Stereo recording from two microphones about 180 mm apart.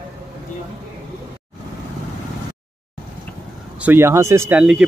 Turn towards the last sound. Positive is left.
turn(degrees=-5)  # may be behind; listen again after turning